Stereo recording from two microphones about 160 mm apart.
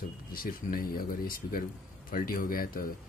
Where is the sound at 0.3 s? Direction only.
65° left (ahead or behind).